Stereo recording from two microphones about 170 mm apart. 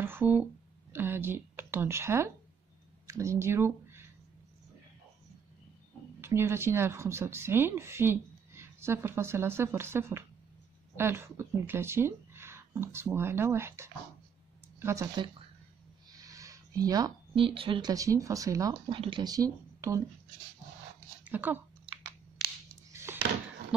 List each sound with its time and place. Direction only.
0.0 s a sound: 10° right (ahead or behind)
0.9 s a woman's voice: 15° right (ahead or behind)
6.2 s a woman's voice: 15° right (ahead or behind)
16.2 s speech: 20° right (ahead or behind)
18.7 s speech: 30° right (ahead or behind)
21.2 s speech: 10° right (ahead or behind)
22.9 s a sound: 15° right (ahead or behind)